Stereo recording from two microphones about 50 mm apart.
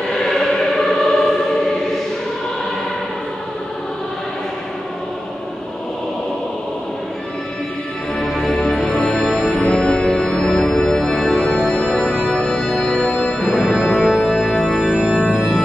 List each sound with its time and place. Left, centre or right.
0.3 s choir: centre
8.2 s music: centre
9.6 s music: centre
13.0 s music: left
13.3 s music: centre
13.9 s organ: centre
14.3 s music: centre
15.0 s organ: centre